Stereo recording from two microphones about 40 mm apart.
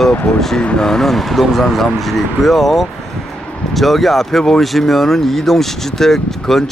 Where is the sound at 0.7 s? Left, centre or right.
Centre.